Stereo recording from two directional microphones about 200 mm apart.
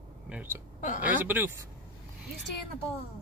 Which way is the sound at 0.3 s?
10° right (ahead or behind).